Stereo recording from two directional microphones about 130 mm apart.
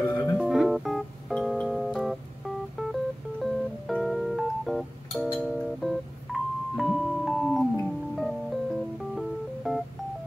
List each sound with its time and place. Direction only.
0.1 s music: 20° left (ahead or behind)
0.4 s music: centre (ahead or behind)